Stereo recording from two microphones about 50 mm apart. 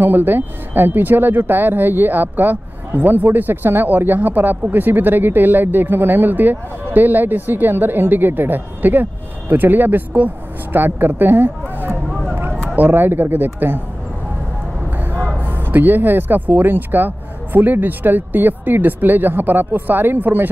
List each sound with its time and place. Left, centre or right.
0.0 s speech: right
15.4 s speech: right